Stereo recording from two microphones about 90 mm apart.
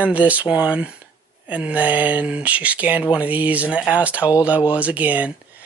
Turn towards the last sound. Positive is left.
turn(degrees=-15)  # may be behind; listen again after turning